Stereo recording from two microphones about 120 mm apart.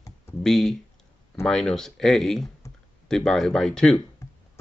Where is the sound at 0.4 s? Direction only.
5° left (ahead or behind).